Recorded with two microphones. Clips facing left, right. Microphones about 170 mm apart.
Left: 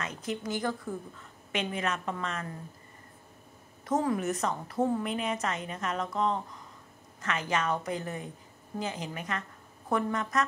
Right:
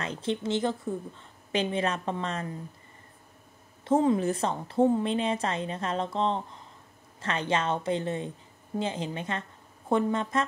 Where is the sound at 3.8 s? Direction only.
25° right (ahead or behind).